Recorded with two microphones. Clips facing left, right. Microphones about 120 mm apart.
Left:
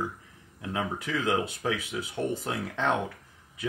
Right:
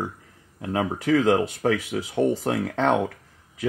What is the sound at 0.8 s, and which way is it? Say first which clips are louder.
Speech: right 10 dB; 90° right.